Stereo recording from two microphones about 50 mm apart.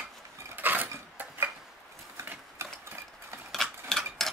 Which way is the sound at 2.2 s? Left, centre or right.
Right.